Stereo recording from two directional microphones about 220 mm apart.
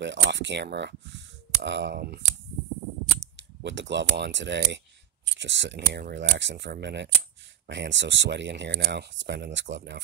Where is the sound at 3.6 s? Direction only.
55° right (ahead or behind).